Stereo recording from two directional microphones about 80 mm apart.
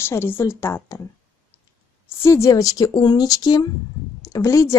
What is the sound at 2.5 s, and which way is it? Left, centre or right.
A woman's voice, left.